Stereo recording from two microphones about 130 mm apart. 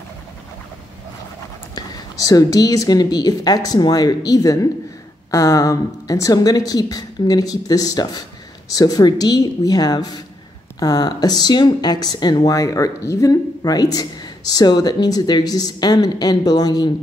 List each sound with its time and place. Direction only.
1.8 s a woman's voice: 30° left (ahead or behind)